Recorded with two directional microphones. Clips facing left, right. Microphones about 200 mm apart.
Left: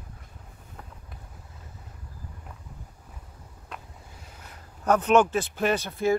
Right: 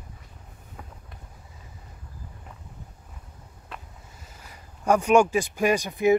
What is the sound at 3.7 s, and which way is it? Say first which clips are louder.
Speech: even; 5° right (ahead or behind).